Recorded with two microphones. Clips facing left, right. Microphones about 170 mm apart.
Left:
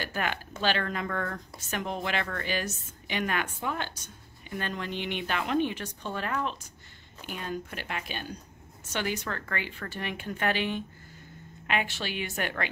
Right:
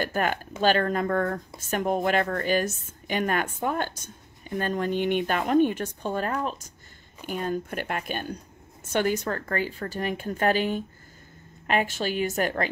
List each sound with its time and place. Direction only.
0.0 s a woman's voice: 45° right (ahead or behind)